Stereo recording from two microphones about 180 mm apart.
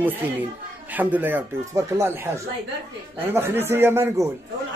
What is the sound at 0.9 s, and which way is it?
A man's voice, 10° right (ahead or behind).